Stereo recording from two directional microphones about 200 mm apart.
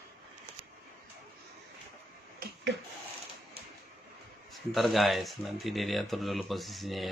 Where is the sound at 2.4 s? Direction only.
50° right (ahead or behind).